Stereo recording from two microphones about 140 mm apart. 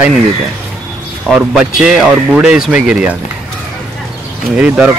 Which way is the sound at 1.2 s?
5° right (ahead or behind).